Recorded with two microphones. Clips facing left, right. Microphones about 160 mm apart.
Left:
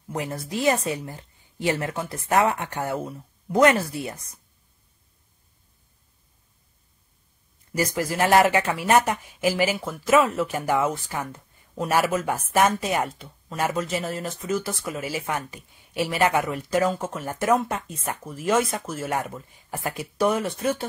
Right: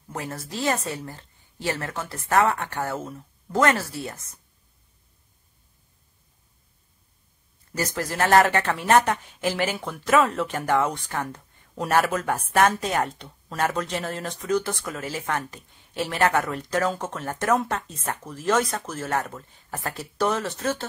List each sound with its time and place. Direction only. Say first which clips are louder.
0.1 s a woman's voice: left 4 dB; 15° left (ahead or behind)
7.7 s a woman's voice: left 3 dB; 10° left (ahead or behind)